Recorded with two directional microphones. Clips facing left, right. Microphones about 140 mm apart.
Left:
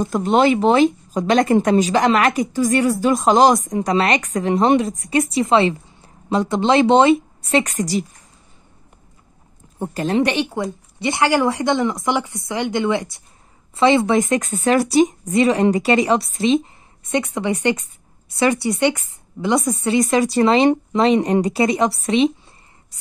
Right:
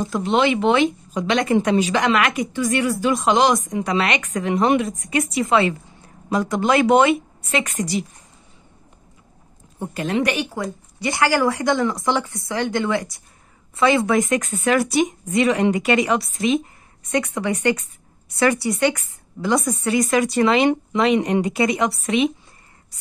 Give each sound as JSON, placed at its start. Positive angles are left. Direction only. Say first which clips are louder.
{"t": 0.0, "sound": "speech", "louder": "left 3 dB", "side_deg": 45}
{"t": 10.0, "sound": "speech", "louder": "left 3 dB", "side_deg": 25}